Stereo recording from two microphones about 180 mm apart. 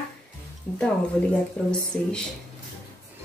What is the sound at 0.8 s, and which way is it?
Speech, 5° left (ahead or behind).